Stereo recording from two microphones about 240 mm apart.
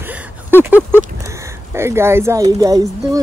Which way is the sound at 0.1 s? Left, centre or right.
Centre.